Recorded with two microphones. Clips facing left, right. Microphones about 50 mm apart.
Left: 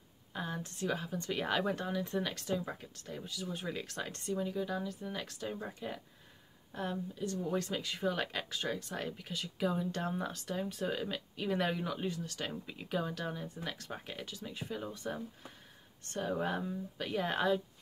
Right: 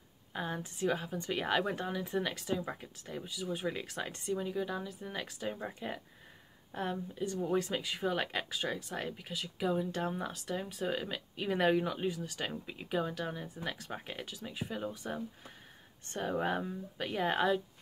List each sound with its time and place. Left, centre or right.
0.3 s speech: centre
16.1 s speech: centre